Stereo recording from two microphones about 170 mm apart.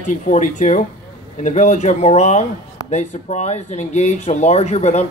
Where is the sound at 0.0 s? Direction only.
45° left (ahead or behind).